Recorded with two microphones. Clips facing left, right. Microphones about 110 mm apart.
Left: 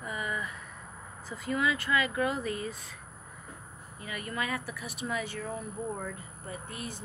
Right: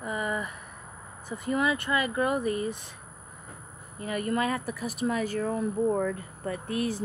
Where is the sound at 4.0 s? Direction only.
40° right (ahead or behind); by 6.9 s 60° right (ahead or behind).